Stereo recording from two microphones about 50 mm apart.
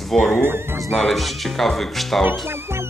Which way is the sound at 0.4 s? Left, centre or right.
Right.